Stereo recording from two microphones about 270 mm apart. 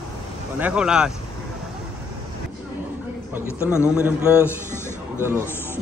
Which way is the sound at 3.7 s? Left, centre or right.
Centre.